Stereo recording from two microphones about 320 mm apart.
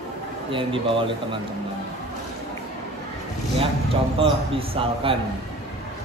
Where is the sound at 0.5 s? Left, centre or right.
Centre.